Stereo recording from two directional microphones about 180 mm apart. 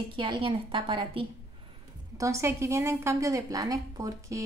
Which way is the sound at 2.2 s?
15° right (ahead or behind).